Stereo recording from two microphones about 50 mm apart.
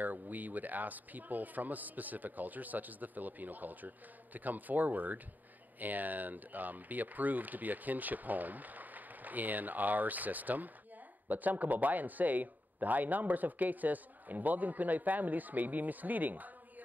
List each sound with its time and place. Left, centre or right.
0.0 s speech: right